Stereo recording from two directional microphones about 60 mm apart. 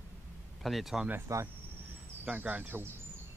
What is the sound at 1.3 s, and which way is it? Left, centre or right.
Speech, right.